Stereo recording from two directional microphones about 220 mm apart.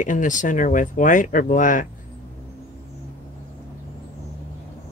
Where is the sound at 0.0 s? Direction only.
35° left (ahead or behind).